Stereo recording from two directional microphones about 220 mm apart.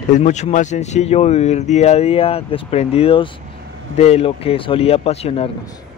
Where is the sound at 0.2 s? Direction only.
30° left (ahead or behind).